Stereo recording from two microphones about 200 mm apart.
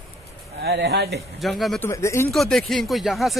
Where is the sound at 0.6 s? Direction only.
55° right (ahead or behind).